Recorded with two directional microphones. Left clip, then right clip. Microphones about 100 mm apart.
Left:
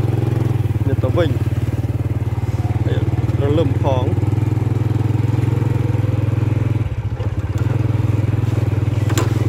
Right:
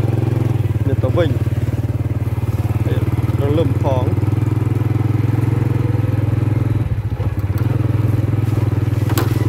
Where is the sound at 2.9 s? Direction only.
20° left (ahead or behind).